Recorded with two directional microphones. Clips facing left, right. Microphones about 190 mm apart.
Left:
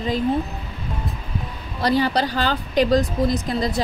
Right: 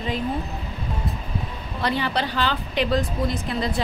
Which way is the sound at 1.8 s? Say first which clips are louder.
Left 5 dB; 40° left (ahead or behind).